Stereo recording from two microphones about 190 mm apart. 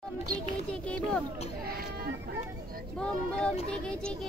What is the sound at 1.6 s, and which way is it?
Speech, 55° right (ahead or behind).